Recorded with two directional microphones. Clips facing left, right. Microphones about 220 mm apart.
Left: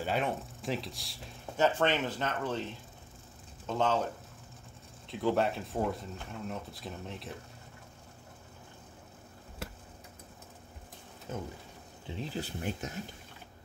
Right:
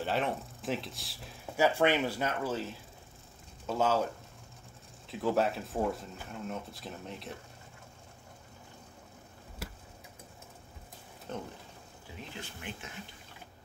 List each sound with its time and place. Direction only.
0.0 s speech: centre (ahead or behind)
5.0 s speech: centre (ahead or behind)
11.3 s speech: 5° left (ahead or behind)
12.1 s speech: 35° left (ahead or behind)